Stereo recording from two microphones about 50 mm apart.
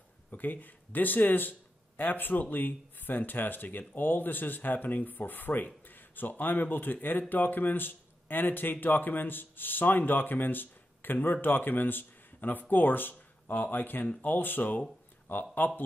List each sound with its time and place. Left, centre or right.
0.3 s speech: left